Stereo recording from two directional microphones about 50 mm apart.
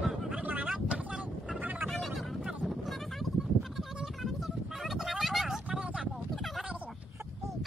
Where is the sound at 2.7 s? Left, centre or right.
Centre.